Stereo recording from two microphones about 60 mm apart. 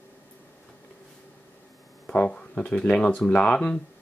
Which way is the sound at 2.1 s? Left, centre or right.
Centre.